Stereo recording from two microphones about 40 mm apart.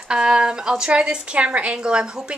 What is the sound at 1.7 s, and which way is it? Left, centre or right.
Speech, right.